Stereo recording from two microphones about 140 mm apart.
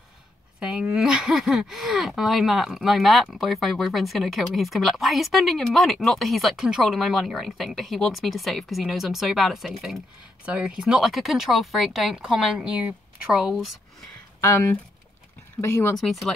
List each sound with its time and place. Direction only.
0.6 s speech: 5° right (ahead or behind)
14.4 s speech: 20° left (ahead or behind)
16.0 s speech: centre (ahead or behind)